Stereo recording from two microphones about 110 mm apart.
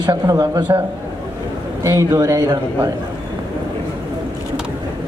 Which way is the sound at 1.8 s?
25° right (ahead or behind).